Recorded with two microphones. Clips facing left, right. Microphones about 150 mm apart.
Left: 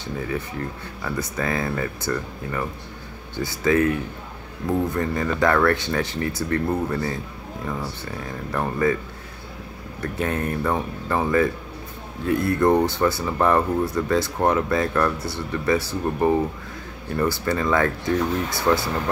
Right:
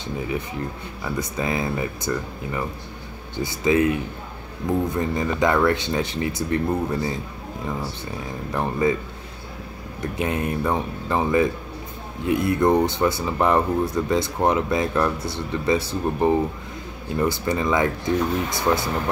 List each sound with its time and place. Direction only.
0.0 s speech: 15° right (ahead or behind)
10.1 s speech: 15° right (ahead or behind)